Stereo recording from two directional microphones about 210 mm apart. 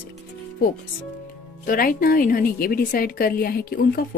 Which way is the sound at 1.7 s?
40° left (ahead or behind).